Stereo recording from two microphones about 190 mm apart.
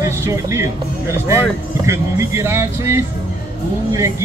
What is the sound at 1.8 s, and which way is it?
Speech, 15° right (ahead or behind).